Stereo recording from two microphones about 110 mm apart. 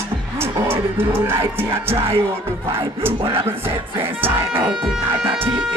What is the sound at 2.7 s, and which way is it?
Music, 55° right (ahead or behind).